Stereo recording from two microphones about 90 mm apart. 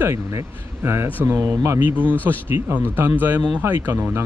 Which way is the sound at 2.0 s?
15° left (ahead or behind).